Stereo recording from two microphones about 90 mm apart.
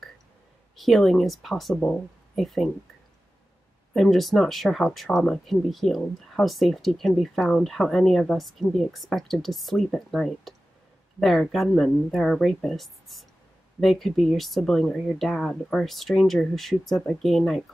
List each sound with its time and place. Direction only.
0.7 s speech: centre (ahead or behind)
1.8 s speech: 10° left (ahead or behind)
2.4 s speech: centre (ahead or behind)
3.9 s speech: centre (ahead or behind)